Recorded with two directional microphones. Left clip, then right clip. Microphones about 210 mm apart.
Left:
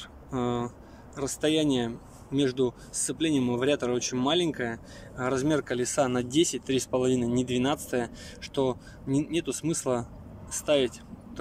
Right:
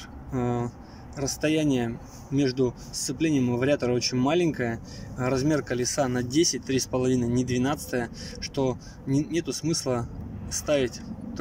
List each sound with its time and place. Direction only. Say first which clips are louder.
0.3 s speech: right 1 dB; centre (ahead or behind)